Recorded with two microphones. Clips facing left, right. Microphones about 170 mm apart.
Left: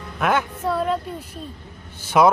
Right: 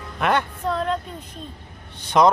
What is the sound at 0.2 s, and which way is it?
Music, 5° left (ahead or behind).